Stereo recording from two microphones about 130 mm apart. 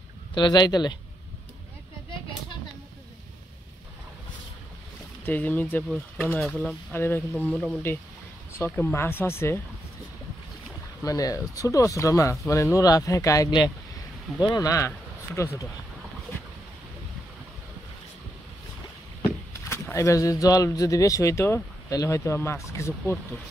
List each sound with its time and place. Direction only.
0.3 s speech: 35° left (ahead or behind)
5.2 s speech: 15° left (ahead or behind)
6.4 s speech: centre (ahead or behind)
6.9 s speech: 15° left (ahead or behind)
7.3 s speech: centre (ahead or behind)
8.5 s speech: 15° left (ahead or behind)
11.1 s speech: 25° left (ahead or behind)
19.2 s speech: 20° left (ahead or behind)